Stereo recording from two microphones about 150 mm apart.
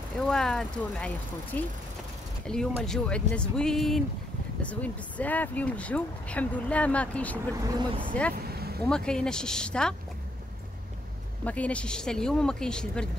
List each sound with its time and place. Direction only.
0.2 s speech: 5° left (ahead or behind)
7.5 s speech: 25° right (ahead or behind)
8.5 s vehicle: 90° right
8.8 s speech: 5° left (ahead or behind)
11.4 s speech: 10° left (ahead or behind)